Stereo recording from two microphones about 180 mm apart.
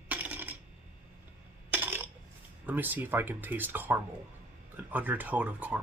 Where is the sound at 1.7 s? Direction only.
10° right (ahead or behind).